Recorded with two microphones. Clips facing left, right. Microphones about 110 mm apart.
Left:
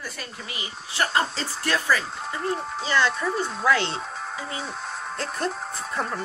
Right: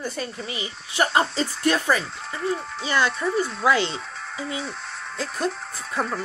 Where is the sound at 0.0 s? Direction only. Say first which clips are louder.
Right 7 dB; 25° right (ahead or behind).